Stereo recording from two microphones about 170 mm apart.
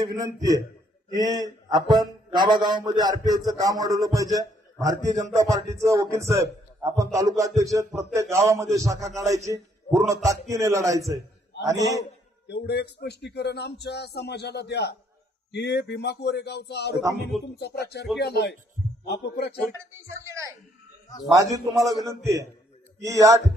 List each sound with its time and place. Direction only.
0.0 s speech: 20° right (ahead or behind)
12.0 s speech: 75° left (ahead or behind)
19.9 s speech: 15° right (ahead or behind)